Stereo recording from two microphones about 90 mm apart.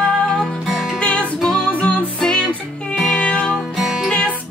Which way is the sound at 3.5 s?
Centre (ahead or behind).